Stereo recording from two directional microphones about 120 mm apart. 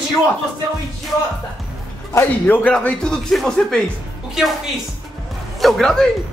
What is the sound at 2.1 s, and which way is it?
Speech, 20° left (ahead or behind).